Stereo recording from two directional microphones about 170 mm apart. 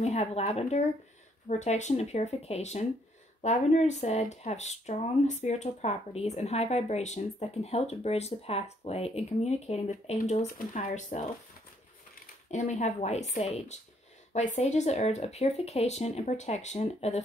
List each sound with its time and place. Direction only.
0.0 s speech: 40° left (ahead or behind)
12.4 s speech: 45° left (ahead or behind)